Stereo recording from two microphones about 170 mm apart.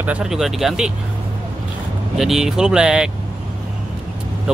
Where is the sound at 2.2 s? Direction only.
Centre (ahead or behind).